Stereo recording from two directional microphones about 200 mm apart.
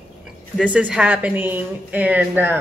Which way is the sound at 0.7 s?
5° right (ahead or behind).